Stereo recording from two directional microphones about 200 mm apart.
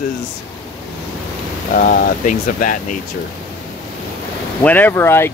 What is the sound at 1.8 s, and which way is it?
Speech, 45° left (ahead or behind).